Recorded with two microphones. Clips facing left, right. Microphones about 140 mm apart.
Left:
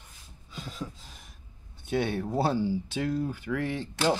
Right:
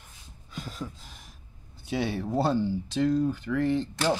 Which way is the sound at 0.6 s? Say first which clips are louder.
Right 1 dB; centre (ahead or behind).